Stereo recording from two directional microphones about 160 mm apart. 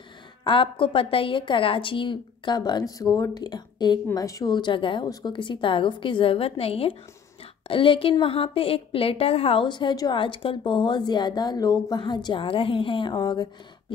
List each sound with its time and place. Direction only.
0.4 s a woman's voice: 30° left (ahead or behind)